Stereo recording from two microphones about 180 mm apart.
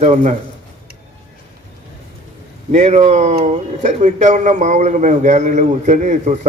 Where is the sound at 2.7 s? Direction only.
40° right (ahead or behind).